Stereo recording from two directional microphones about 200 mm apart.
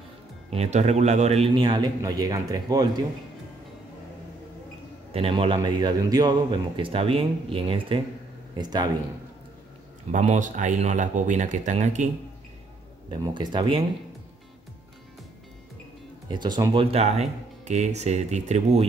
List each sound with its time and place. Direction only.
0.5 s a man's voice: 35° right (ahead or behind)
5.1 s a man's voice: 30° right (ahead or behind)
10.1 s speech: 35° right (ahead or behind)
13.1 s a man's voice: 20° right (ahead or behind)
16.3 s speech: 20° right (ahead or behind)